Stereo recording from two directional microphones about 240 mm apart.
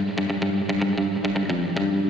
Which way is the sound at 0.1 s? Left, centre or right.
Centre.